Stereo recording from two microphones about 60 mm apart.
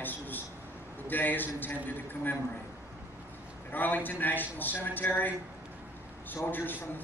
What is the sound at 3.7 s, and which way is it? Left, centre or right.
A man's voice, left.